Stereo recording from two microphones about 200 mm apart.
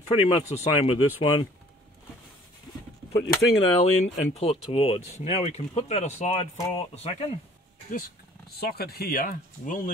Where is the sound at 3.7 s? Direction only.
35° left (ahead or behind).